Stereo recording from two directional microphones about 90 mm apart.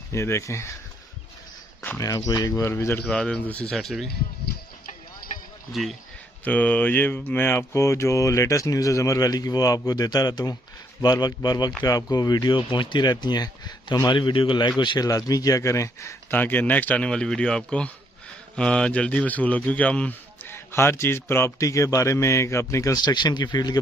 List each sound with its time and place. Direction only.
0.1 s speech: 35° left (ahead or behind)
2.0 s speech: 40° left (ahead or behind)
2.7 s a man's voice: 30° left (ahead or behind)
3.1 s speech: 10° left (ahead or behind)
3.7 s speech: centre (ahead or behind)
5.7 s speech: centre (ahead or behind)
6.4 s speech: 15° left (ahead or behind); by 14.1 s 45° left (ahead or behind)
14.1 s a man's voice: 70° left (ahead or behind)
15.0 s speech: 40° left (ahead or behind)
16.3 s speech: 20° left (ahead or behind)
20.4 s speech: 25° left (ahead or behind)
23.0 s speech: 55° left (ahead or behind)